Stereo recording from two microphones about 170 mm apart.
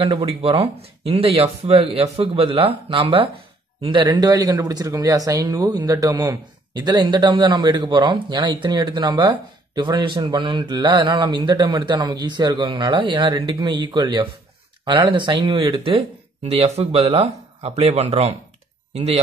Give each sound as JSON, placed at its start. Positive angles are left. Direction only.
{"t": 0.0, "sound": "speech", "side_deg": -35}